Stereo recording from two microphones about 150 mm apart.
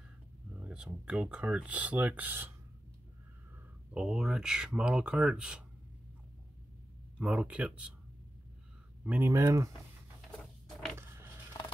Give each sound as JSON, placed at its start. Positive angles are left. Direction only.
{"t": 0.6, "sound": "speech", "side_deg": -5}
{"t": 3.5, "sound": "speech", "side_deg": -5}
{"t": 7.2, "sound": "speech", "side_deg": -10}
{"t": 9.0, "sound": "speech", "side_deg": -10}
{"t": 9.3, "sound": "speech", "side_deg": -20}
{"t": 10.4, "sound": "printer", "side_deg": 0}